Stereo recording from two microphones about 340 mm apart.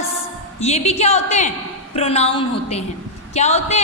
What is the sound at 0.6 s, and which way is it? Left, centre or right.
A woman's voice, centre.